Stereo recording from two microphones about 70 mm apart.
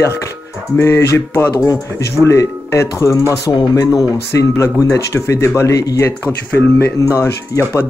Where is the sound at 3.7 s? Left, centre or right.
Left.